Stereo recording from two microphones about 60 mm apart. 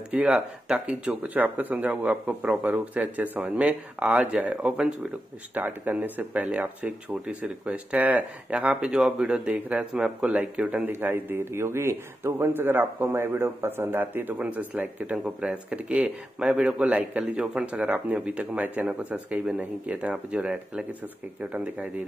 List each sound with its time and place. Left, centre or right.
0.1 s speech: right
5.5 s a man's voice: right
10.9 s a man's voice: right
15.2 s speech: centre